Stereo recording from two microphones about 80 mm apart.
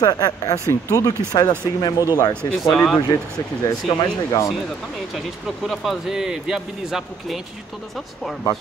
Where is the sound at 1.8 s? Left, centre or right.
Left.